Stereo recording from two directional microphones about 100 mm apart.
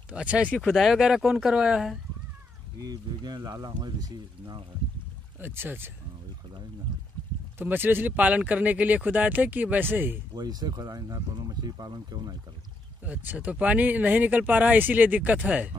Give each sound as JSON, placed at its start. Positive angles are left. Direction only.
{"t": 0.1, "sound": "speech", "side_deg": -10}
{"t": 0.7, "sound": "speech", "side_deg": 0}
{"t": 2.8, "sound": "speech", "side_deg": -40}
{"t": 5.4, "sound": "speech", "side_deg": -20}
{"t": 7.5, "sound": "speech", "side_deg": -20}
{"t": 10.3, "sound": "speech", "side_deg": -40}
{"t": 13.0, "sound": "speech", "side_deg": -15}